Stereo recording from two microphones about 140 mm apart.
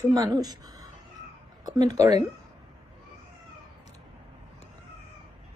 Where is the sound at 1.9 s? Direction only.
25° right (ahead or behind).